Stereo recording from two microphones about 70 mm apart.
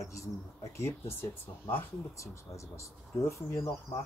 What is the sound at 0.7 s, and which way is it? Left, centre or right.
Speech, left.